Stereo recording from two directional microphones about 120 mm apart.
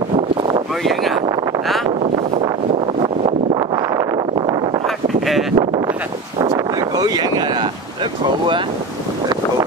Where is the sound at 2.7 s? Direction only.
55° right (ahead or behind).